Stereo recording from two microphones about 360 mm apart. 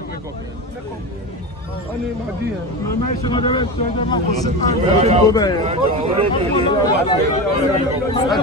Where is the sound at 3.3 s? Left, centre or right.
Centre.